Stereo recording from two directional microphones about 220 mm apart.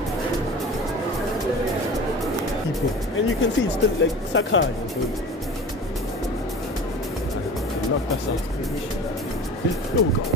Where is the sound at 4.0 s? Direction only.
60° left (ahead or behind).